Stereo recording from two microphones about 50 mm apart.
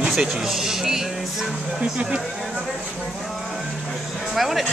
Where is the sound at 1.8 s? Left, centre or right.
Right.